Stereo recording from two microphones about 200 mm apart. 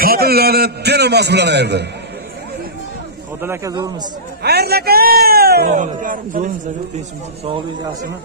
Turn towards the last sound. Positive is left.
turn(degrees=-40)  # may be behind; listen again after turning